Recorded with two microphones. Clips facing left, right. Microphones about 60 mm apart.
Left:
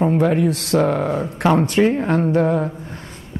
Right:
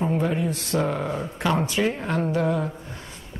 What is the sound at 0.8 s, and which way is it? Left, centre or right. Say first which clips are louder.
Speech: left 7 dB; left.